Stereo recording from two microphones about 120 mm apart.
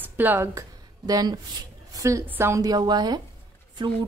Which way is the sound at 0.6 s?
30° right (ahead or behind).